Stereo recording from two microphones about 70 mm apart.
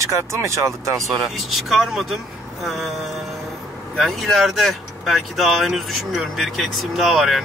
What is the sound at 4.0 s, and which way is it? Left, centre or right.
Speech, centre.